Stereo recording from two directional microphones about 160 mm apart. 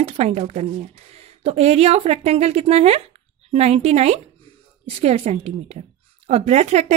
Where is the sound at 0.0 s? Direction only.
40° right (ahead or behind).